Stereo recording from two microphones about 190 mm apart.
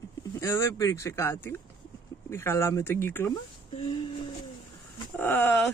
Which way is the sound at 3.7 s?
25° left (ahead or behind).